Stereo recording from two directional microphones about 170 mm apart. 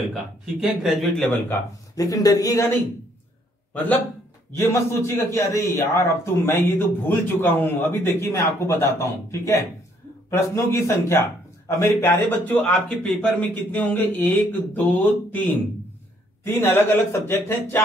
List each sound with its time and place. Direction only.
0.1 s speech: centre (ahead or behind)
1.2 s a man's voice: 10° left (ahead or behind)